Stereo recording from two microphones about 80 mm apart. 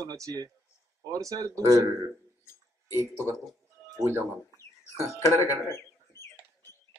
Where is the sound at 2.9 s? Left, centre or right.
Right.